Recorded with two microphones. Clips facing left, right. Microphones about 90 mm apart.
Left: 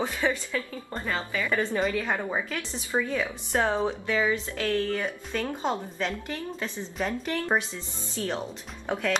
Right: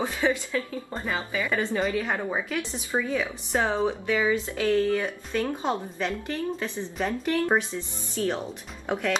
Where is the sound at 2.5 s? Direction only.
15° right (ahead or behind).